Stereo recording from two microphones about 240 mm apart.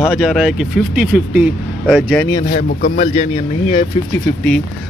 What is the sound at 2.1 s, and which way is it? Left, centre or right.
Speech, centre.